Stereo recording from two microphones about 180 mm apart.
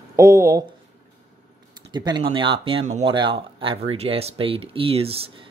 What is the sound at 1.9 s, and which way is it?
Speech, 25° right (ahead or behind).